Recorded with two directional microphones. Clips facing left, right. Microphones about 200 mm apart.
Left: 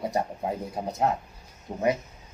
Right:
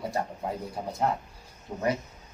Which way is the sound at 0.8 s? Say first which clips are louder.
Left 2 dB; 30° left (ahead or behind).